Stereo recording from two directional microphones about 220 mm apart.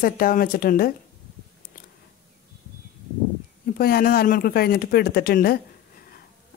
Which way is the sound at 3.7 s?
45° left (ahead or behind).